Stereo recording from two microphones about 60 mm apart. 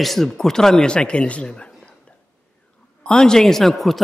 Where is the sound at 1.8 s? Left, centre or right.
Left.